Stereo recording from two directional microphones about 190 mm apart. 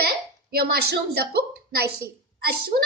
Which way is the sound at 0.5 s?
55° right (ahead or behind).